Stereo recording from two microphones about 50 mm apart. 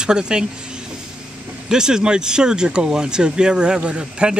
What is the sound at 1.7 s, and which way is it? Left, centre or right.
Speech, centre.